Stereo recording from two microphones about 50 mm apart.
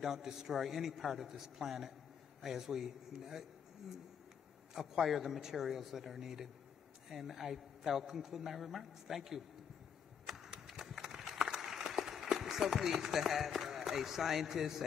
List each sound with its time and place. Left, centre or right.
0.0 s a man's voice: centre
4.7 s a man's voice: centre
10.2 s run: centre